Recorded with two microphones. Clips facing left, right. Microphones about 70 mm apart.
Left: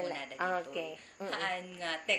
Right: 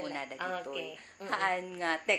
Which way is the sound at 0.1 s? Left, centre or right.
Right.